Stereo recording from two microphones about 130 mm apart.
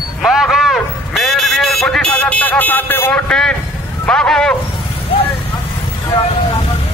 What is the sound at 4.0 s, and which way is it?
Speech, 5° left (ahead or behind).